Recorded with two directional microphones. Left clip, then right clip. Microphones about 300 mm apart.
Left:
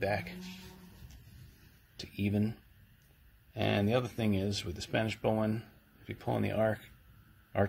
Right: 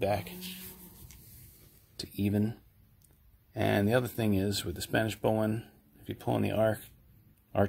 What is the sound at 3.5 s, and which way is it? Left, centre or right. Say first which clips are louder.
Speech: right 3 dB; right.